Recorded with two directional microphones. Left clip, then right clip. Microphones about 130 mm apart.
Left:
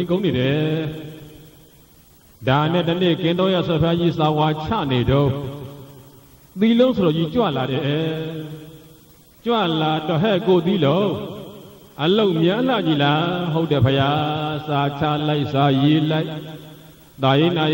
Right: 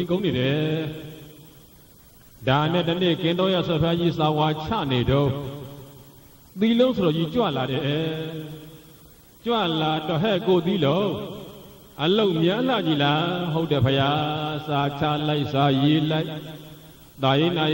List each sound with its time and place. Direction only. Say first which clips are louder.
0.0 s a man's voice: left 3 dB; 35° left (ahead or behind)
2.4 s a man's voice: left 3 dB; 30° left (ahead or behind)